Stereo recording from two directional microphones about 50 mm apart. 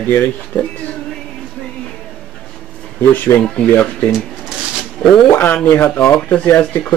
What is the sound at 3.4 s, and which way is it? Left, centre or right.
Speech, centre.